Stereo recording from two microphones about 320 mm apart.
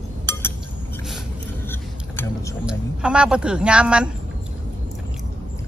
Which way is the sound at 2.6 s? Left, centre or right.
Centre.